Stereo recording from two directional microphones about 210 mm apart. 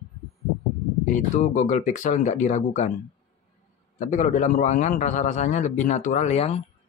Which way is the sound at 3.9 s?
35° left (ahead or behind).